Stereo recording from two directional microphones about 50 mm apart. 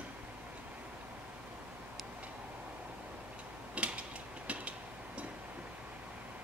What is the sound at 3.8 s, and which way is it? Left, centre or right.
Mechanisms, right.